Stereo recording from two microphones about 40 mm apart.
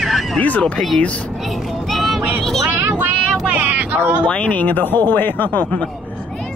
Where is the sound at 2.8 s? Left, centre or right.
Right.